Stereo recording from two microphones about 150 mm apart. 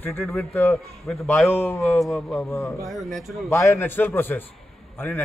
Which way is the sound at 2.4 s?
15° left (ahead or behind).